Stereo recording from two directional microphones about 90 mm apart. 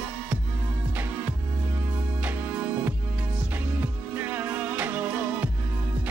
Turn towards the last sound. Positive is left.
turn(degrees=-20)  # may be behind; listen again after turning